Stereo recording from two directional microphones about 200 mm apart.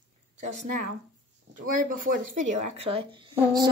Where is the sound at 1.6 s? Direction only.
45° right (ahead or behind).